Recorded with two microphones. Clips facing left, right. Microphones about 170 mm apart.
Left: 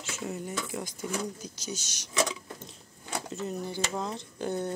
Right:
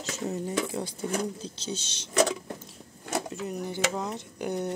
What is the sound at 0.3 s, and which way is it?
Speech, 30° right (ahead or behind).